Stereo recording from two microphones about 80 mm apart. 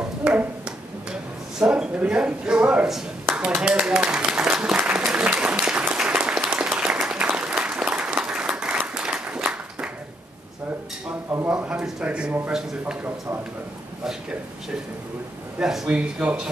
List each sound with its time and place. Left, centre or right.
0.2 s finger snapping: centre
1.6 s speech: centre
4.7 s applause: centre
11.4 s a sound: centre
15.6 s speech: centre
15.9 s speech: centre